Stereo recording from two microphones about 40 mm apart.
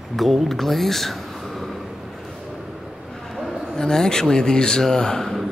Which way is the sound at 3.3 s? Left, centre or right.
Centre.